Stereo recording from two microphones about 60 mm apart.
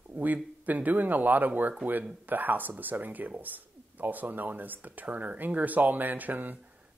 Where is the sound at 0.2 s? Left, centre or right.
Right.